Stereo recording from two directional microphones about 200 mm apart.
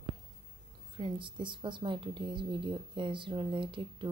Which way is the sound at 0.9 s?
25° right (ahead or behind).